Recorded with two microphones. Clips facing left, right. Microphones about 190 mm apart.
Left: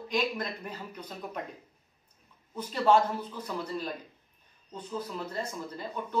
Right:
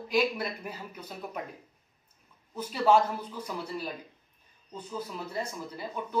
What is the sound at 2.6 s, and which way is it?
Speech, 10° right (ahead or behind).